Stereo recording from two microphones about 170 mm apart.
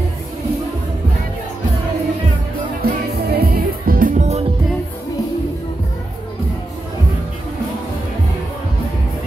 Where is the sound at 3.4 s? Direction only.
60° right (ahead or behind); by 4.5 s 40° right (ahead or behind).